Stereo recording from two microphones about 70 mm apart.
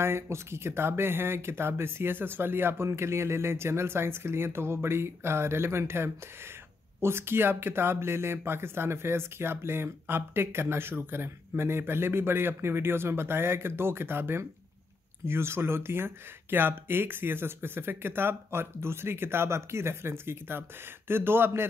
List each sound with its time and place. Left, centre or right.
0.0 s speech: right